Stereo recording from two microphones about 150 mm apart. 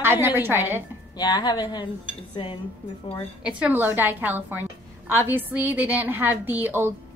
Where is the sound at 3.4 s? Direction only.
10° right (ahead or behind).